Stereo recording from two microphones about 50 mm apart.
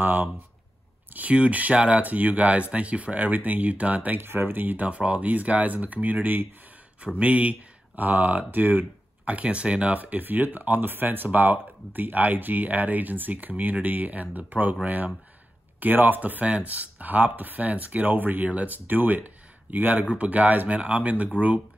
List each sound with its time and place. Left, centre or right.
0.0 s speech: right
1.1 s speech: right
2.0 s speech: right
4.2 s speech: right
18.4 s speech: right